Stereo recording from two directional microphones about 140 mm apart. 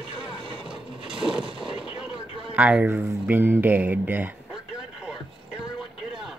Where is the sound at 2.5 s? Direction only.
10° right (ahead or behind).